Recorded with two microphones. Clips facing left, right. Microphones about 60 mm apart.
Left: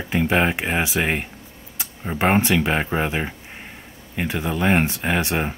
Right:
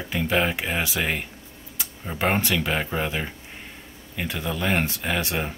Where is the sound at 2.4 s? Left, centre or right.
Left.